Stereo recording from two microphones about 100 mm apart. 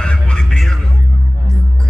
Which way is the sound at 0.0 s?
10° left (ahead or behind).